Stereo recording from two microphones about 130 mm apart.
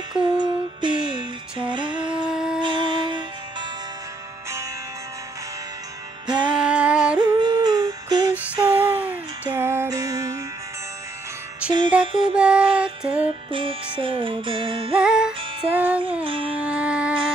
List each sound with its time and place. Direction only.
0.4 s music: 35° right (ahead or behind)
2.2 s wind instrument: 5° right (ahead or behind)
2.6 s music: 35° right (ahead or behind)
6.2 s music: 35° right (ahead or behind)
6.6 s music: 10° right (ahead or behind)
7.2 s music: 35° right (ahead or behind)
8.7 s music: 15° right (ahead or behind)
11.6 s music: 10° right (ahead or behind)
12.0 s music: 40° right (ahead or behind)
12.4 s music: 10° right (ahead or behind)
13.5 s music: 40° right (ahead or behind)
15.0 s music: 5° right (ahead or behind)
16.5 s a sound: 10° right (ahead or behind)